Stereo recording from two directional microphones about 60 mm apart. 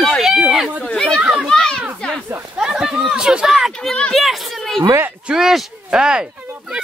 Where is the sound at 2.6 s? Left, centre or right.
Centre.